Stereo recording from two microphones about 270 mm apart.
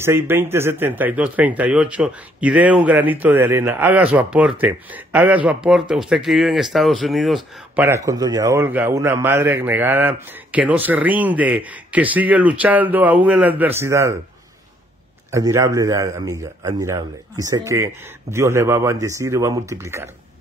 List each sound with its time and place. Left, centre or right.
0.0 s speech: centre
15.3 s speech: centre